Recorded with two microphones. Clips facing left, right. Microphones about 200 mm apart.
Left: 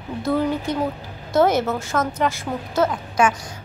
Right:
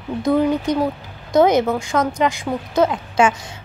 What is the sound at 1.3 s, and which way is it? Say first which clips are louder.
A woman's voice: right 3 dB; 15° right (ahead or behind).